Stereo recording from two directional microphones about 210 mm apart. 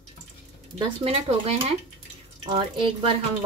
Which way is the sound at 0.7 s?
25° right (ahead or behind).